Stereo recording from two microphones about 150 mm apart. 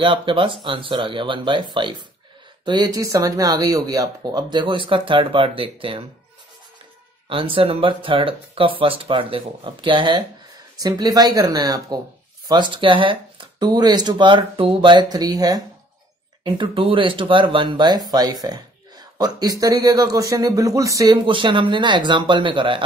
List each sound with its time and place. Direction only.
0.0 s speech: 35° right (ahead or behind)
7.2 s speech: 35° right (ahead or behind)